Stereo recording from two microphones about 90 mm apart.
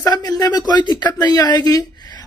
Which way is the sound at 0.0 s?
45° left (ahead or behind).